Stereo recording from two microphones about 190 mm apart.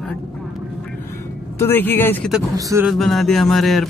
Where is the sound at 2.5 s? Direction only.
15° right (ahead or behind).